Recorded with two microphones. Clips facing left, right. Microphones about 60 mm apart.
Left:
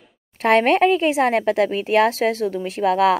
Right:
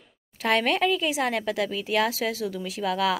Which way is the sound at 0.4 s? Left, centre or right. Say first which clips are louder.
Left 8 dB; left.